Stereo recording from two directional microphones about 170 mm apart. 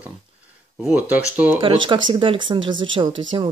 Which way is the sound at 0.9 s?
10° right (ahead or behind).